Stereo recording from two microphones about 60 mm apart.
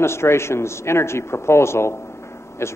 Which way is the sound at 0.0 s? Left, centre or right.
Left.